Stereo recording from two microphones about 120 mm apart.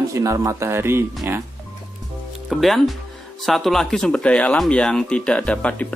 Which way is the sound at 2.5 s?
Centre (ahead or behind).